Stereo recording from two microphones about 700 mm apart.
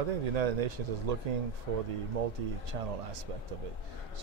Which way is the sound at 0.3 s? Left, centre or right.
Right.